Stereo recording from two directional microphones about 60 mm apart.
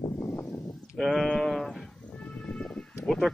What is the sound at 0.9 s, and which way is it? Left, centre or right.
Speech, centre.